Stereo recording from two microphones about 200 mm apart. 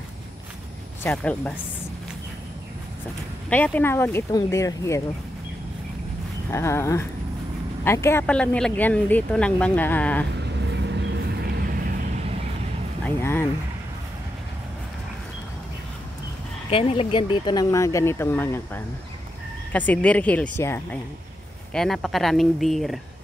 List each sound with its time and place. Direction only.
1.0 s speech: 5° left (ahead or behind)
3.4 s speech: 10° left (ahead or behind)
6.5 s speech: 15° left (ahead or behind)
10.3 s vehicle: 60° right (ahead or behind)
13.0 s music: 10° left (ahead or behind)
16.7 s speech: 30° left (ahead or behind); by 22.9 s centre (ahead or behind)